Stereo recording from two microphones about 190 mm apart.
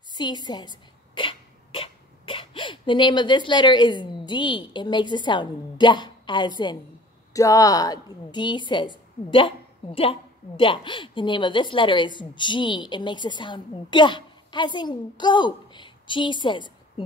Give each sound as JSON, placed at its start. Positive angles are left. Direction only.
{"t": 0.1, "sound": "a woman's voice", "side_deg": 20}